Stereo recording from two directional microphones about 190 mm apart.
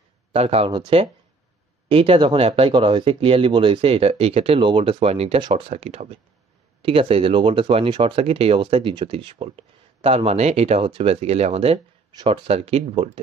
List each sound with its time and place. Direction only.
0.3 s speech: 30° right (ahead or behind)